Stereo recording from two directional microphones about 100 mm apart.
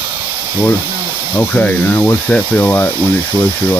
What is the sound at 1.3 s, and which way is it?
Speech, 15° left (ahead or behind).